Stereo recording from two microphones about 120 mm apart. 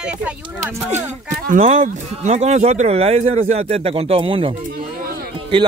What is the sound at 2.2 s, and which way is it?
Speech, 70° right (ahead or behind).